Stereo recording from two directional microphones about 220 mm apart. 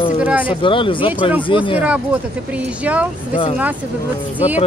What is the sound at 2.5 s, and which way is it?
Speech, 5° right (ahead or behind).